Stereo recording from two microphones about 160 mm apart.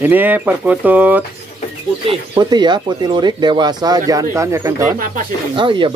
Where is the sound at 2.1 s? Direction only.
25° right (ahead or behind).